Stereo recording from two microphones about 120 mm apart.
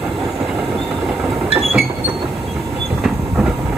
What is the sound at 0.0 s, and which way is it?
Train, 5° right (ahead or behind).